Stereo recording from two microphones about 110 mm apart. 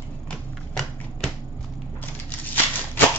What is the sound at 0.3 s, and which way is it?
Typewriter, 5° left (ahead or behind).